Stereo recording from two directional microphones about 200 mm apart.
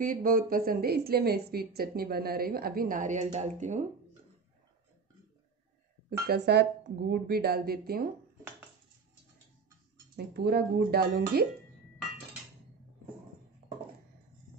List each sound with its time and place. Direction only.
0.0 s a woman's voice: 45° right (ahead or behind)
6.0 s a woman's voice: 55° right (ahead or behind)
10.1 s a woman's voice: 50° right (ahead or behind)